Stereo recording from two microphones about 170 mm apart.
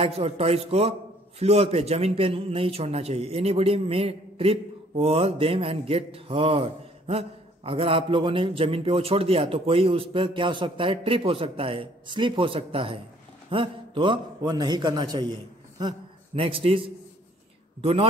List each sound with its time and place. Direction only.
0.0 s a man's voice: 35° right (ahead or behind)
16.3 s a man's voice: 30° right (ahead or behind)